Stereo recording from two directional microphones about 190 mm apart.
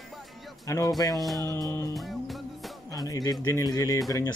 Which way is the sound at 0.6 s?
15° left (ahead or behind).